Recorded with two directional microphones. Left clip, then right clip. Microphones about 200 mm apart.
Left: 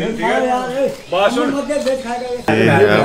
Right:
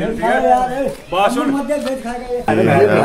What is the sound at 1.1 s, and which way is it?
Speech, 60° right (ahead or behind).